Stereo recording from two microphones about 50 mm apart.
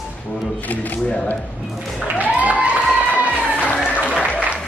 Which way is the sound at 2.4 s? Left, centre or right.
Right.